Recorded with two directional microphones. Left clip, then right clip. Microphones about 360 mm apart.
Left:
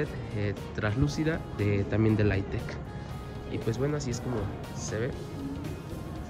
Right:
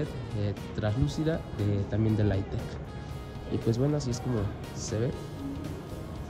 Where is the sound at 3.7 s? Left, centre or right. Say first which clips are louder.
Even; centre.